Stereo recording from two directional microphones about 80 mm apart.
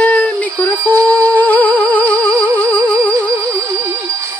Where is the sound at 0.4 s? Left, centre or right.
Centre.